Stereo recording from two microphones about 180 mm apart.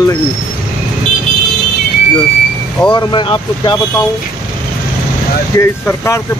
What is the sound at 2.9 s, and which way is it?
Speech, 25° left (ahead or behind).